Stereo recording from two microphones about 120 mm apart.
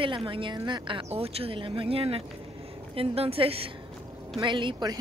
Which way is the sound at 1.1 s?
55° right (ahead or behind).